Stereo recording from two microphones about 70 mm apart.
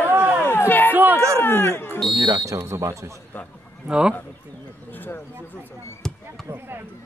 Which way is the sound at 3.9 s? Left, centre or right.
Centre.